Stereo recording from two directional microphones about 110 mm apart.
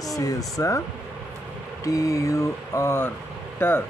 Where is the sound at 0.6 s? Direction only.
30° left (ahead or behind).